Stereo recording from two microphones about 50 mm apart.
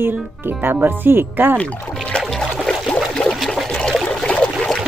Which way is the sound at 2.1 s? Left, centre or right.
Centre.